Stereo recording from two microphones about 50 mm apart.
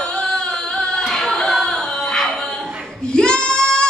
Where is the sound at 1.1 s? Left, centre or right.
Centre.